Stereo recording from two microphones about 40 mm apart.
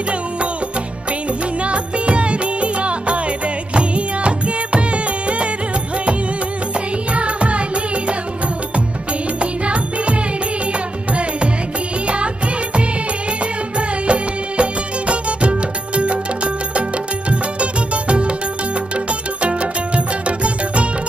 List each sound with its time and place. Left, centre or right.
1.6 s music: right
7.2 s music: right
9.4 s music: right
13.7 s music: right
17.3 s music: right
20.2 s music: right